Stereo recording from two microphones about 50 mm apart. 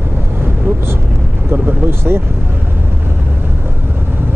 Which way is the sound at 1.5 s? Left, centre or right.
Right.